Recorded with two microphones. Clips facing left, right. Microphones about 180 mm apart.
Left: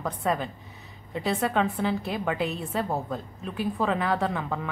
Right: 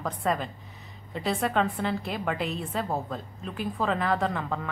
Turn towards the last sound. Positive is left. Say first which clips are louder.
# left 1 dB
turn(degrees=5)  # may be behind; listen again after turning